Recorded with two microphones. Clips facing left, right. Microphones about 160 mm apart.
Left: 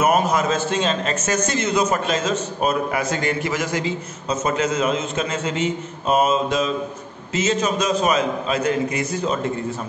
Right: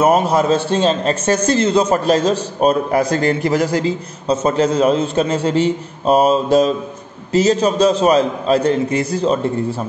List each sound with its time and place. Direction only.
0.0 s a man's voice: 30° right (ahead or behind)